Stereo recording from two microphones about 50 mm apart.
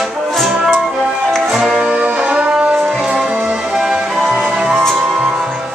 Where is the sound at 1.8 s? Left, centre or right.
Right.